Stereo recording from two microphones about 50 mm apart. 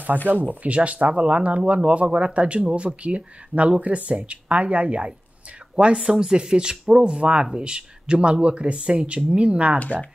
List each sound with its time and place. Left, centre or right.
0.3 s speech: right
5.9 s speech: centre